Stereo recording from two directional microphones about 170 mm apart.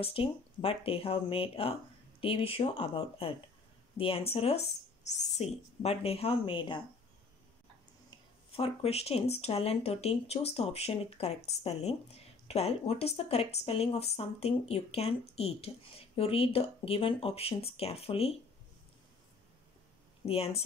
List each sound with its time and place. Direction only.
0.0 s speech: 35° left (ahead or behind)
8.5 s speech: 35° left (ahead or behind)
20.2 s speech: 35° left (ahead or behind)